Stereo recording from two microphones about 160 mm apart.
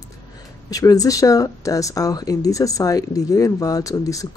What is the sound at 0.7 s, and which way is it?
Speech, 20° left (ahead or behind).